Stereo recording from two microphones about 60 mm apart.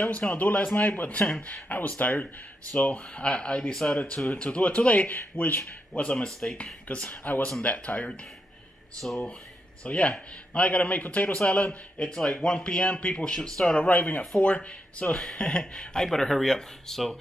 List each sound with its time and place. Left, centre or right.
0.1 s a man's voice: left
5.9 s a man's voice: centre
9.0 s speech: centre
9.8 s a man's voice: centre